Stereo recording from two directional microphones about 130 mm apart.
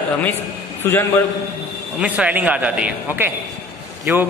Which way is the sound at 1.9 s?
10° right (ahead or behind).